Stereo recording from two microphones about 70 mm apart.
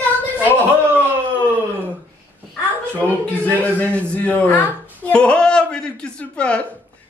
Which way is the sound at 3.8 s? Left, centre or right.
Left.